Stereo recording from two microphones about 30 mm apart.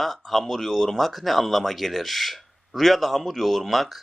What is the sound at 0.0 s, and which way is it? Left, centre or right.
Speech, centre.